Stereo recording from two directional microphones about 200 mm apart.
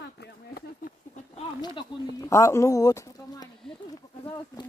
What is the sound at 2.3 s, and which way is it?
Speech, 15° left (ahead or behind).